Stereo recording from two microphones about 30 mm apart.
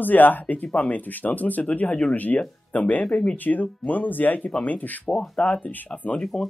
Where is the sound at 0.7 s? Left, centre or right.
Left.